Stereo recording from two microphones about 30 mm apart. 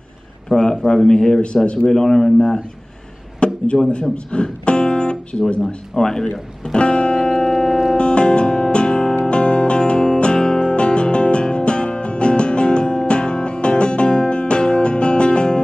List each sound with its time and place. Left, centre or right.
0.5 s a man's voice: left
3.3 s a sound: left
4.3 s music: left
5.3 s a man's voice: centre
6.6 s music: left
7.4 s music: centre
8.0 s music: left